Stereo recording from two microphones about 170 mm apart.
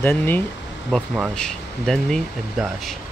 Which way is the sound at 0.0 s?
10° left (ahead or behind).